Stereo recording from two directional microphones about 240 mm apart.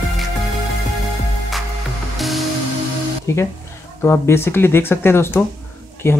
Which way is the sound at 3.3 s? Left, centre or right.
Centre.